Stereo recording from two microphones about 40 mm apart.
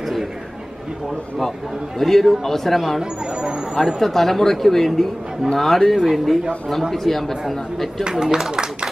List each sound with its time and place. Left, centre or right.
2.0 s speech: centre
3.0 s a sound: right
3.7 s speech: centre
8.0 s a man's voice: centre